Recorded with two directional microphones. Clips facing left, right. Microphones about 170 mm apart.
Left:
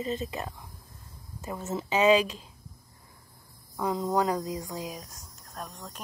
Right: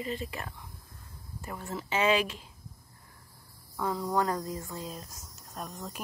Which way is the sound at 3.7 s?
20° left (ahead or behind).